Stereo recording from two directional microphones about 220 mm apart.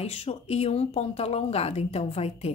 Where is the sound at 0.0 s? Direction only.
30° left (ahead or behind).